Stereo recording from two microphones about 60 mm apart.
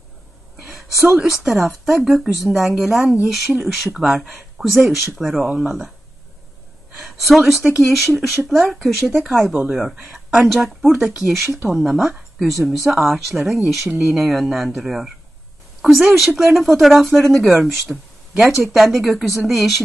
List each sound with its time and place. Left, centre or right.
0.6 s a sound: centre
1.2 s speech: centre
7.0 s speech: centre
9.5 s speech: centre
10.0 s speech: centre
11.0 s speech: centre
11.2 s speech: centre